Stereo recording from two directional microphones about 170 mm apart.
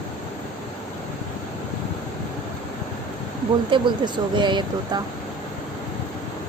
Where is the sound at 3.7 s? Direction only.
30° right (ahead or behind).